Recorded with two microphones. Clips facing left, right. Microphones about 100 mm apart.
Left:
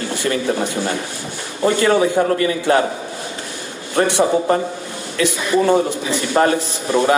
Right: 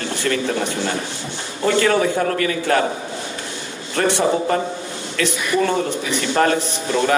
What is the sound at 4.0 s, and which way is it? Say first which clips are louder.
A man's voice: left 2 dB; 20° left (ahead or behind).